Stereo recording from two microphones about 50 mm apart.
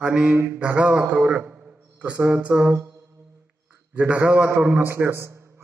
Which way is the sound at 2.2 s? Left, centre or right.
Right.